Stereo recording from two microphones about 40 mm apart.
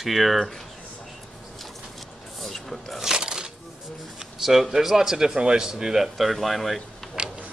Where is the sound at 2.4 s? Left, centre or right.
Centre.